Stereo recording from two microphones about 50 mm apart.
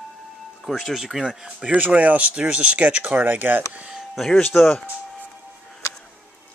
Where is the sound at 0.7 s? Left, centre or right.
Centre.